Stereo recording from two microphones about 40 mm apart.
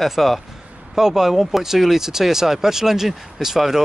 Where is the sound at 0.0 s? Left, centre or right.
Centre.